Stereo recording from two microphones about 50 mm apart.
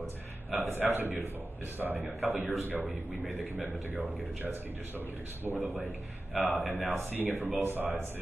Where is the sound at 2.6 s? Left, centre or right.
Right.